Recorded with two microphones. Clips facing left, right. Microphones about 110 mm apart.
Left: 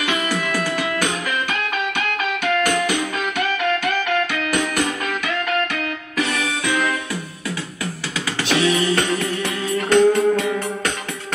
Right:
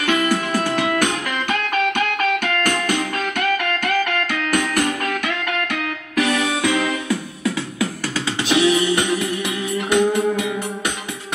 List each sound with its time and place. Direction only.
0.0 s music: 45° right (ahead or behind)
8.5 s music: 15° right (ahead or behind)